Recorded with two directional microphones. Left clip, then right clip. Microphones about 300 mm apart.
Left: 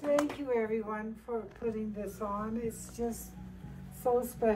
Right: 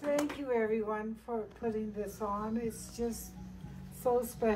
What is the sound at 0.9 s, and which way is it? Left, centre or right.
Speech, right.